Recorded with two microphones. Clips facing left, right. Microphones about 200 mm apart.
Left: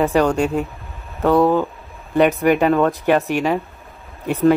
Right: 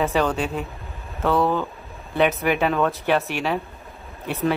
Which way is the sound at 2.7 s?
15° left (ahead or behind).